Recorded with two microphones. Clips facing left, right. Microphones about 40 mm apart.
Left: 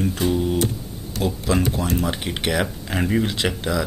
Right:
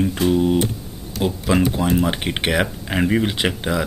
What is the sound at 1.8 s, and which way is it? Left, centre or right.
Speech, right.